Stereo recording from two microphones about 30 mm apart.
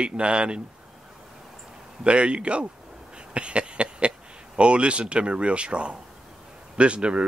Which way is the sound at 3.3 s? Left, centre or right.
Right.